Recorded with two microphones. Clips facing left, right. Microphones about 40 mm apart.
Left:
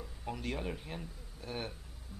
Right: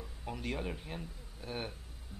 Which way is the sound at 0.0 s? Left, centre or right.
Centre.